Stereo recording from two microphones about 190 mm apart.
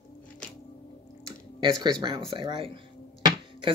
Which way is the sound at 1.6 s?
20° right (ahead or behind).